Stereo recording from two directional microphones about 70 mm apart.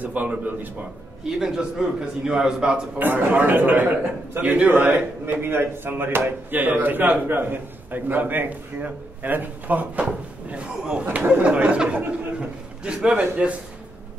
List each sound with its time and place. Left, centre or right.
0.0 s a man's voice: right
1.4 s a man's voice: centre
3.0 s a man's voice: right
10.0 s a man's voice: centre